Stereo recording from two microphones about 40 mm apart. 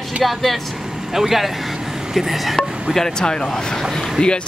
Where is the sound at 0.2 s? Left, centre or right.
Centre.